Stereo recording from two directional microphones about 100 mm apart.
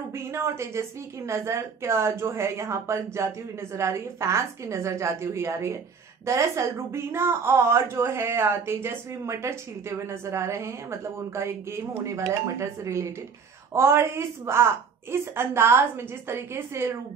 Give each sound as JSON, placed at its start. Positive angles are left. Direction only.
{"t": 0.1, "sound": "a woman's voice", "side_deg": -25}